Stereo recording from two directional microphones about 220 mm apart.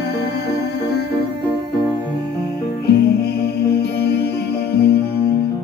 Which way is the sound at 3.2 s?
45° left (ahead or behind).